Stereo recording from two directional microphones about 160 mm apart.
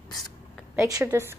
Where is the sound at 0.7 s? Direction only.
20° right (ahead or behind).